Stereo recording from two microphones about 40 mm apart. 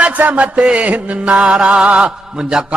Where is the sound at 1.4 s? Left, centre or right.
Right.